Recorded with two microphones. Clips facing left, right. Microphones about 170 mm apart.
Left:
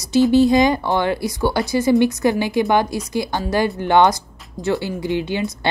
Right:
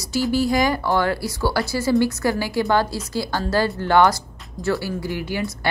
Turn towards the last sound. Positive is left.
turn(degrees=20)  # may be behind; listen again after turning